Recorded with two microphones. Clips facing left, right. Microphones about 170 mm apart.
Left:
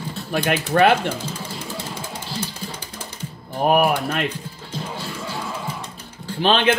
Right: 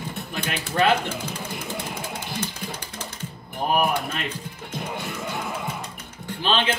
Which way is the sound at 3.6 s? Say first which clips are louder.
Left 5 dB; 65° left (ahead or behind).